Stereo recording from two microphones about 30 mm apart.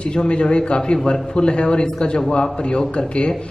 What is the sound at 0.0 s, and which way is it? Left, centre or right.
A woman's voice, left.